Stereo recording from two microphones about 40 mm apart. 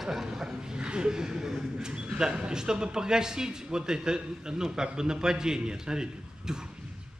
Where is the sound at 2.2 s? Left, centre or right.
Centre.